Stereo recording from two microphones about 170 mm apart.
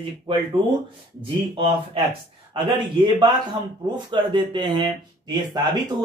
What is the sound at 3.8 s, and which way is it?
Speech, 25° right (ahead or behind).